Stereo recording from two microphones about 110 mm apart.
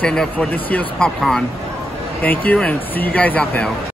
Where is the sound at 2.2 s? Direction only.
15° left (ahead or behind).